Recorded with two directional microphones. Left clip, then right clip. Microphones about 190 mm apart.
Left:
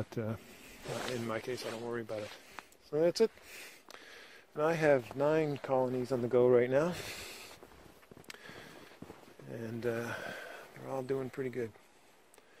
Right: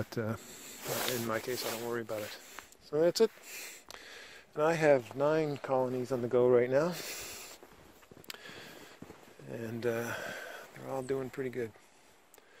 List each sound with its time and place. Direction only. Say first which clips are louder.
0.0 s speech: right 3 dB; 20° right (ahead or behind)
0.8 s snake: right 4 dB; 45° right (ahead or behind)
1.2 s speech: right 3 dB; 20° right (ahead or behind)
5.0 s speech: right 1 dB; 5° right (ahead or behind)
8.3 s a sound: right 3 dB; 25° right (ahead or behind)
9.5 s speech: right 2 dB; 20° right (ahead or behind)